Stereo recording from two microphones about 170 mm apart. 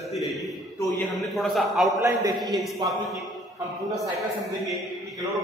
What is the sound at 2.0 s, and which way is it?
Speech, 20° right (ahead or behind).